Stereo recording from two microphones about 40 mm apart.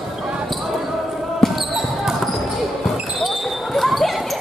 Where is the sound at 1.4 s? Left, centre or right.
Centre.